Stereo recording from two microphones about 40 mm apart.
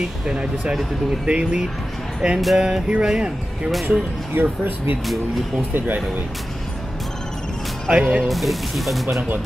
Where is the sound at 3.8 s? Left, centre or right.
Right.